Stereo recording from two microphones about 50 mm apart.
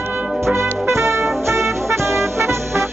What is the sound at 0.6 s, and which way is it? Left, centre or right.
Music, right.